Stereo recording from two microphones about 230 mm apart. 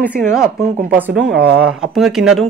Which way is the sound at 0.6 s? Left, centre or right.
Right.